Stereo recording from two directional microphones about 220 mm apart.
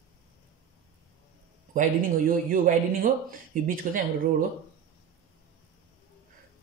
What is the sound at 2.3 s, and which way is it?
A man's voice, 40° right (ahead or behind).